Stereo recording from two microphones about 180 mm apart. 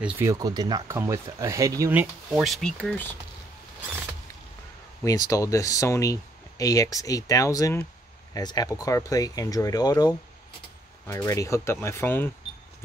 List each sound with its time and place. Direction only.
0.2 s speech: 20° right (ahead or behind); by 3.1 s 5° left (ahead or behind)
5.3 s speech: 20° left (ahead or behind)